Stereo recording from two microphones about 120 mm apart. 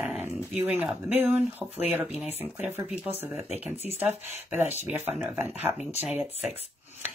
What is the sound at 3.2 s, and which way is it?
Speech, 15° right (ahead or behind).